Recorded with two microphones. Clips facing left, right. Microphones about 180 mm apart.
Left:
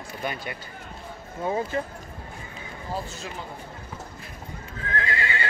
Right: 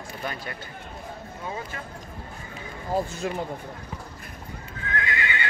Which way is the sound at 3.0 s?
55° right (ahead or behind).